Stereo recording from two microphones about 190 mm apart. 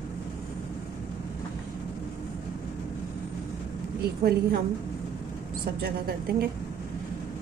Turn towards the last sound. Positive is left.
turn(degrees=-55)  # may be behind; listen again after turning